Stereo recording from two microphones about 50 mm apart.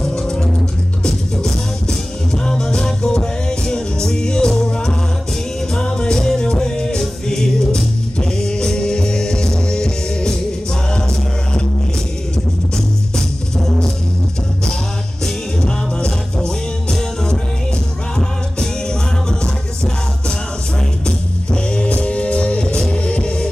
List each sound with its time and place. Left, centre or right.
0.0 s music: centre
12.7 s music: centre
16.3 s music: centre
19.4 s music: centre
21.5 s music: left